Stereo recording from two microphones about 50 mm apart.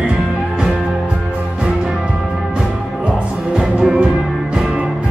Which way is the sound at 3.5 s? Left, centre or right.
Centre.